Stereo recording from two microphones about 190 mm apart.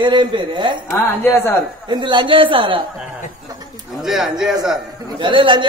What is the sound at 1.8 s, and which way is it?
Speech, 25° right (ahead or behind).